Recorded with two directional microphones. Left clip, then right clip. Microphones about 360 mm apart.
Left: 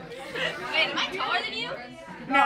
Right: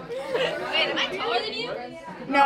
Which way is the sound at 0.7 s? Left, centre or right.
Centre.